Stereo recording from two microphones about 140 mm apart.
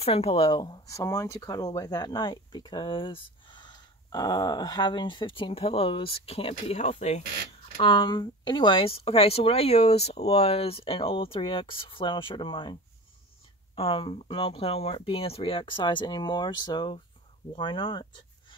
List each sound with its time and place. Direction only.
0.0 s speech: 45° left (ahead or behind)
7.8 s speech: 30° left (ahead or behind)
13.7 s speech: 40° left (ahead or behind)